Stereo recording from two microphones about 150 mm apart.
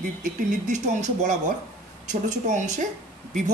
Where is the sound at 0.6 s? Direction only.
50° right (ahead or behind).